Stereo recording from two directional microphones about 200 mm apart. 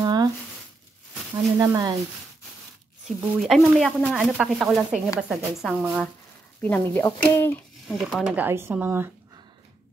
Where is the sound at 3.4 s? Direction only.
Centre (ahead or behind).